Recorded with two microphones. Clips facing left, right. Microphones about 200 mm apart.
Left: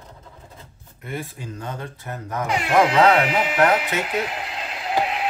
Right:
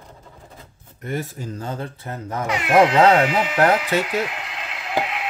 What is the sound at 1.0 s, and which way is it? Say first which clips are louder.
Speech: right 4 dB; 45° right (ahead or behind).